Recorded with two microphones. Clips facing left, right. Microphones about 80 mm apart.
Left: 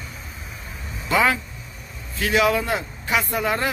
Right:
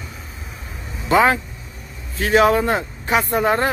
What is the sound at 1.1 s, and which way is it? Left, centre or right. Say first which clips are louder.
A man's voice: right 5 dB; right.